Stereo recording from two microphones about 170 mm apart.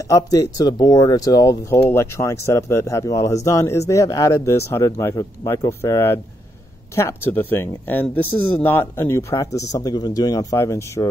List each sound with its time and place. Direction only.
0.1 s speech: 20° left (ahead or behind)